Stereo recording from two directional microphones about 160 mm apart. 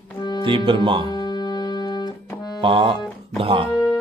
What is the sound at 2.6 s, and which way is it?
Speech, 30° right (ahead or behind).